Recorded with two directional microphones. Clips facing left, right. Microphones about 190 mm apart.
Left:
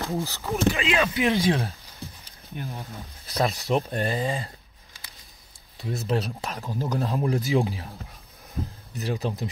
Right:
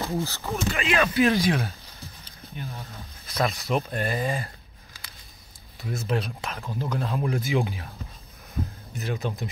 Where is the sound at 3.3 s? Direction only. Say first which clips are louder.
Left 2 dB; 35° left (ahead or behind).